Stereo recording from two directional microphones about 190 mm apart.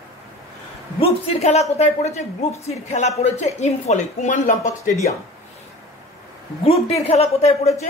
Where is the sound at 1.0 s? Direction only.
30° left (ahead or behind).